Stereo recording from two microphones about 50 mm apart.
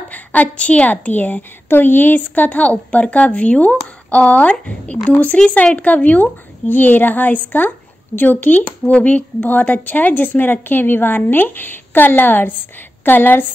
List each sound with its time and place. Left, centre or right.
0.1 s a woman's voice: left
1.7 s a woman's voice: left; by 5.5 s centre
5.8 s speech: left